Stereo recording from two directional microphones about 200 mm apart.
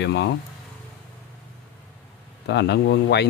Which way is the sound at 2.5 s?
60° left (ahead or behind).